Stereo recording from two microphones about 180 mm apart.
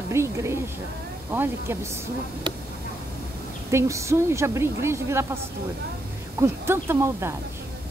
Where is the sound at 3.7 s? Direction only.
15° right (ahead or behind).